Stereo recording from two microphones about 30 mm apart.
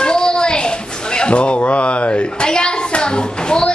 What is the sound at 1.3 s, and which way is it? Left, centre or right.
Speech, left.